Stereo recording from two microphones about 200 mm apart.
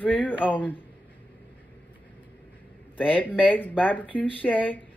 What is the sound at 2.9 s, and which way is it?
Speech, 10° left (ahead or behind).